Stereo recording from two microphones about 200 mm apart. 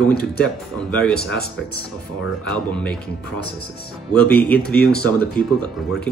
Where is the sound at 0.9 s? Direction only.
5° left (ahead or behind).